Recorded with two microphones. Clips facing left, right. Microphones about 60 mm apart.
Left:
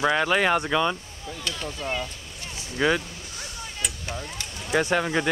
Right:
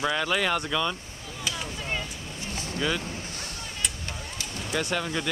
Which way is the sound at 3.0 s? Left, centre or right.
Right.